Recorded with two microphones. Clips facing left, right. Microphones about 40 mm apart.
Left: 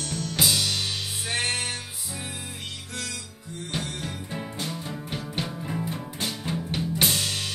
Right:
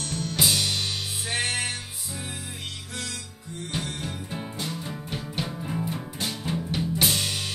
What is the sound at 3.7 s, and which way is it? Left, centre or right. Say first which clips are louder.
Music: even; centre.